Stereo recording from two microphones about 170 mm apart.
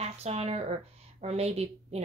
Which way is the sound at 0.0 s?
40° right (ahead or behind).